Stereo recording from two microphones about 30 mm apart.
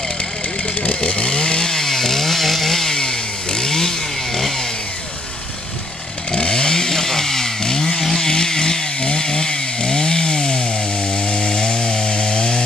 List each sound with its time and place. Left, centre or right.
1.0 s chainsaw: left; by 3.0 s centre
3.0 s chainsaw: left
6.3 s chainsaw: left